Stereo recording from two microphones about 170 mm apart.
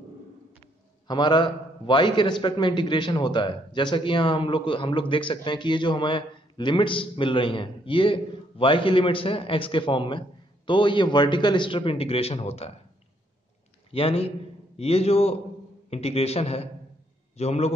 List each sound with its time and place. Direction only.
1.0 s a man's voice: 25° left (ahead or behind)
13.9 s a man's voice: 35° left (ahead or behind)